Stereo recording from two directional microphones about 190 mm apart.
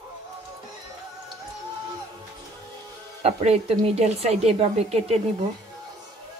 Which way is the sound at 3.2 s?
35° right (ahead or behind).